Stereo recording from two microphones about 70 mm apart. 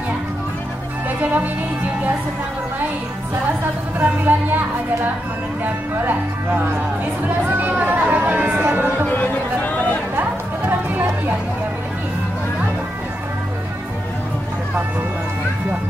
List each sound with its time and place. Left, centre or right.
1.2 s speech: right
4.0 s speech: right
9.0 s a sound: left
10.1 s music: right